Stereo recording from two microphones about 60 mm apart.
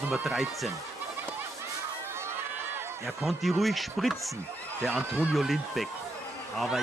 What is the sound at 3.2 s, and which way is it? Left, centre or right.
Speech, centre.